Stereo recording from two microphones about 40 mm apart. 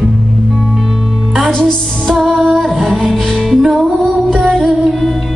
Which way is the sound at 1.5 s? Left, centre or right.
Centre.